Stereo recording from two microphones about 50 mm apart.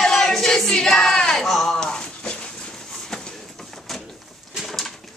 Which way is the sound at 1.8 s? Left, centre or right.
Centre.